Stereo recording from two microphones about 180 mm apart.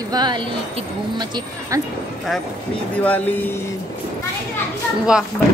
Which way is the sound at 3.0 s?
10° left (ahead or behind).